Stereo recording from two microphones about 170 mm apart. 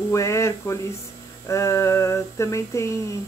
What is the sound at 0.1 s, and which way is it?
Speech, 15° left (ahead or behind).